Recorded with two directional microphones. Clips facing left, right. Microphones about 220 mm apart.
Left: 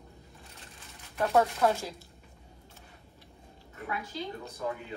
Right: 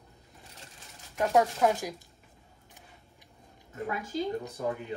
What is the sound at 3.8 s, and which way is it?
Speech, 45° right (ahead or behind).